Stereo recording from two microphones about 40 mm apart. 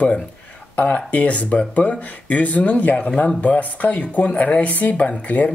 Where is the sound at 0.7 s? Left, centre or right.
Left.